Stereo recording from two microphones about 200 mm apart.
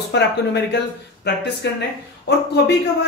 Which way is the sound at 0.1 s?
55° left (ahead or behind).